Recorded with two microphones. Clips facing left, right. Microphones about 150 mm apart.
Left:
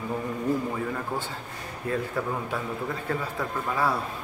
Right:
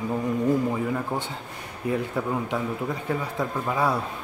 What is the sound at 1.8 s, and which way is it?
Speech, 15° right (ahead or behind).